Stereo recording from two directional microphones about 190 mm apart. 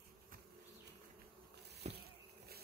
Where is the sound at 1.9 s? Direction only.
55° right (ahead or behind).